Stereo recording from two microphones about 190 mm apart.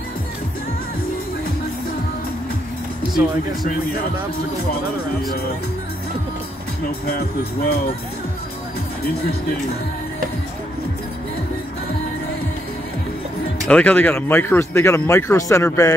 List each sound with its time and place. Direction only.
7.1 s speech: 55° left (ahead or behind)
9.0 s speech: 55° left (ahead or behind)
13.7 s speech: 10° left (ahead or behind)